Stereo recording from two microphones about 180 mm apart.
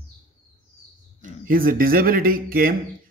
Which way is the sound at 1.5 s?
50° right (ahead or behind).